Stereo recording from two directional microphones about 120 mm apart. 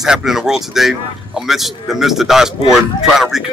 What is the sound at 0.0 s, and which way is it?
Speech, 5° right (ahead or behind).